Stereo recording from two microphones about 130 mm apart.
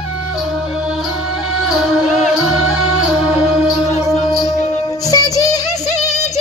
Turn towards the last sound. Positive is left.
turn(degrees=25)  # may be behind; listen again after turning